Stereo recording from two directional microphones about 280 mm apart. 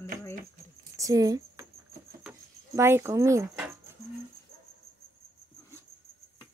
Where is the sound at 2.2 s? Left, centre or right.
Centre.